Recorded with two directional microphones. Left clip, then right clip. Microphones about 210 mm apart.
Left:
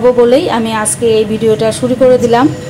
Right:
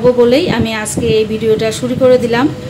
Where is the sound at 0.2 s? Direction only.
5° left (ahead or behind).